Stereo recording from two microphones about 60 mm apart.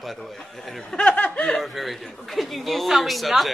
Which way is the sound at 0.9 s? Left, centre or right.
Left.